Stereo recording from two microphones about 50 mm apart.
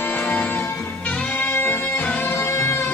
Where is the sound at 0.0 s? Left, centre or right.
Left.